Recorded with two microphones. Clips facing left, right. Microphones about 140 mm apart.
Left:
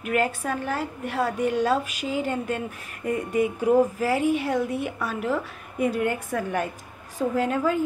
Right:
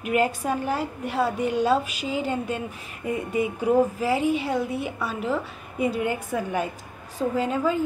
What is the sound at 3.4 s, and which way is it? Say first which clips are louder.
A woman's voice: left 1 dB; centre (ahead or behind).